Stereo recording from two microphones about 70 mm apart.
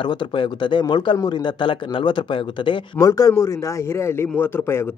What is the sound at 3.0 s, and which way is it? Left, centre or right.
A man's voice, left.